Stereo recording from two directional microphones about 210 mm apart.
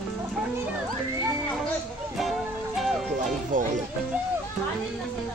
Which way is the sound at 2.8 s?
Centre (ahead or behind).